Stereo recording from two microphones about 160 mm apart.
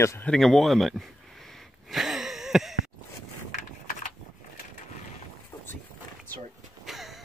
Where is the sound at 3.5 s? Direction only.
50° left (ahead or behind).